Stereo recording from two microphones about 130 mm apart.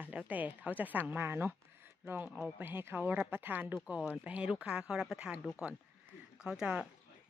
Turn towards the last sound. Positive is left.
turn(degrees=-5)  # may be behind; listen again after turning